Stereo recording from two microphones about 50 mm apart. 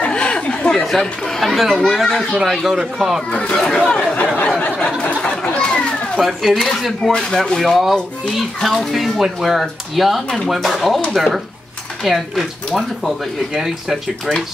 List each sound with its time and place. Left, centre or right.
0.0 s chatter: left
0.7 s speech: centre
3.3 s speech: left
4.7 s a sound: left
5.2 s chatter: left
6.1 s speech: centre
7.1 s speech: centre
8.9 s speech: centre